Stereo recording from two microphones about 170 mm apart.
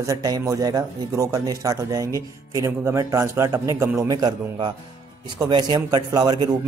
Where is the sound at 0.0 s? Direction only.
20° right (ahead or behind).